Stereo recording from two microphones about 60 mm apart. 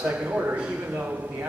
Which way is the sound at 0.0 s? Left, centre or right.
Right.